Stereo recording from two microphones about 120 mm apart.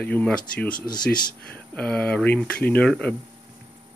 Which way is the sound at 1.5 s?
10° left (ahead or behind).